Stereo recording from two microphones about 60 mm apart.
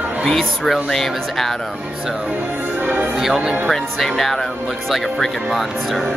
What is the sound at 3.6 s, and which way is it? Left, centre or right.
Speech, centre.